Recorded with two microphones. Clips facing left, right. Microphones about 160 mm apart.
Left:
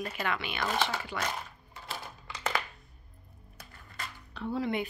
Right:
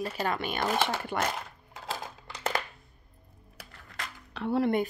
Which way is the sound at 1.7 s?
90° right.